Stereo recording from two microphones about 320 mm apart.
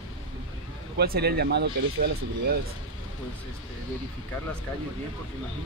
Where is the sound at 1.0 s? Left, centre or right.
Right.